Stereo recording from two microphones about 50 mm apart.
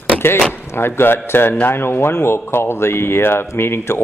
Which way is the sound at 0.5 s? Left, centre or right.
Left.